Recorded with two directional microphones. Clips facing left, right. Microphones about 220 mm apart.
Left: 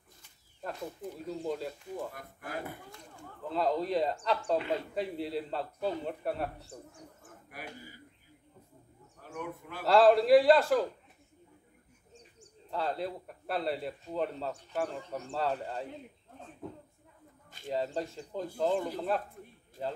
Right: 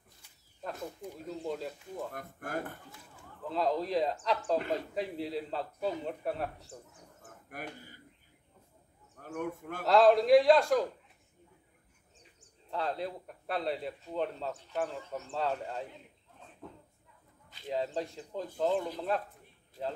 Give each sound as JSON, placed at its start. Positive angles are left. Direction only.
{"t": 1.0, "sound": "speech", "side_deg": -10}
{"t": 1.4, "sound": "speech", "side_deg": 0}
{"t": 2.1, "sound": "a man's voice", "side_deg": -50}
{"t": 2.9, "sound": "speech", "side_deg": 0}
{"t": 9.2, "sound": "a man's voice", "side_deg": -45}
{"t": 9.8, "sound": "speech", "side_deg": 0}
{"t": 12.1, "sound": "a man's voice", "side_deg": 0}
{"t": 17.6, "sound": "speech", "side_deg": 0}